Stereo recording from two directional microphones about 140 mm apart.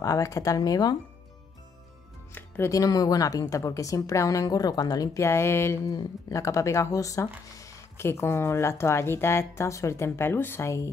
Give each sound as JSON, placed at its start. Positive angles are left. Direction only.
{"t": 0.0, "sound": "a woman's voice", "side_deg": 25}
{"t": 2.3, "sound": "speech", "side_deg": 15}
{"t": 2.7, "sound": "a woman's voice", "side_deg": 25}